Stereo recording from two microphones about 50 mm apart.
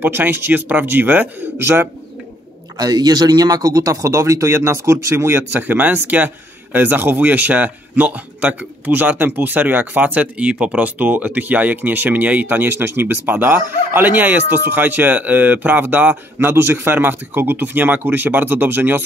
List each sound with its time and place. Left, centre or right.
0.0 s speech: right
1.6 s speech: right
3.8 s speech: right
10.8 s speech: right
12.7 s speech: right
16.3 s a man's voice: right